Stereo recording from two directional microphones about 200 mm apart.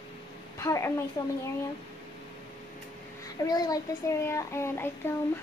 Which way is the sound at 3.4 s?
20° left (ahead or behind).